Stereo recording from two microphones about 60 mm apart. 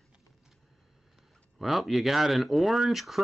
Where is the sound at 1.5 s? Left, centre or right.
Centre.